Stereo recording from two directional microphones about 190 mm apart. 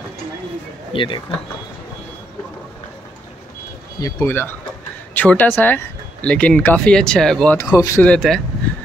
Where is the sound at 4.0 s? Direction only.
10° left (ahead or behind).